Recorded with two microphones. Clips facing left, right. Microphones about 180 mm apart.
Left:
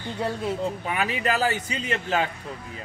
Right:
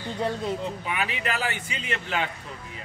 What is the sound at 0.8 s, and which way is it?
A man's voice, 40° left (ahead or behind).